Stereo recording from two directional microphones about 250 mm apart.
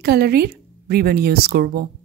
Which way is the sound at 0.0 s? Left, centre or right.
Right.